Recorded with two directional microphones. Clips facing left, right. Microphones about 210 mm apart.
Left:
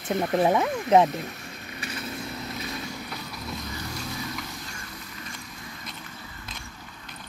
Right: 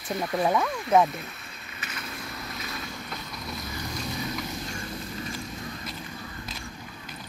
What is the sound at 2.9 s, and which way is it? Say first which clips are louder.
Train: left 2 dB; 10° left (ahead or behind).